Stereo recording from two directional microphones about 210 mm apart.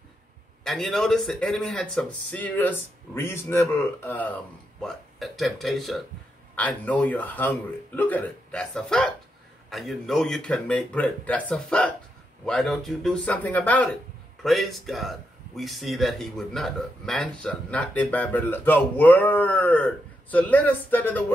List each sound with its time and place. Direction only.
0.7 s a man's voice: centre (ahead or behind)